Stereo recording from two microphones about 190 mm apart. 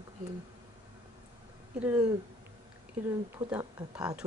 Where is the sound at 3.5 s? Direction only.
10° right (ahead or behind).